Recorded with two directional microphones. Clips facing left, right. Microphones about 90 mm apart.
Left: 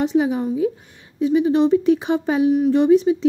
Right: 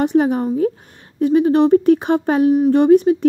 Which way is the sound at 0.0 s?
55° right (ahead or behind).